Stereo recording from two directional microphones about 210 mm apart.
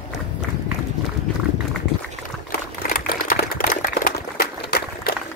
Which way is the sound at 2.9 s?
45° left (ahead or behind).